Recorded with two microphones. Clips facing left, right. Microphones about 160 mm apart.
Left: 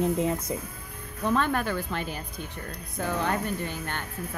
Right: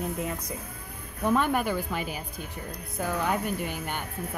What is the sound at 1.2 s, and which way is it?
Speech, 10° right (ahead or behind).